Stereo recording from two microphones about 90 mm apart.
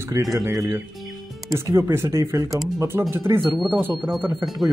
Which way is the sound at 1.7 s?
25° right (ahead or behind).